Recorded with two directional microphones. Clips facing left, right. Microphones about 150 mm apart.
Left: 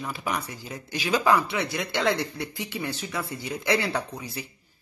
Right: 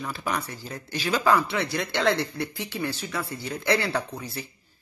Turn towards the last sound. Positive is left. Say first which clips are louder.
# right 1 dB
turn(degrees=20)  # may be behind; listen again after turning